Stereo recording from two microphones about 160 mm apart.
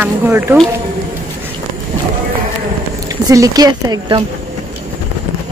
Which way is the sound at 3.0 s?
20° right (ahead or behind).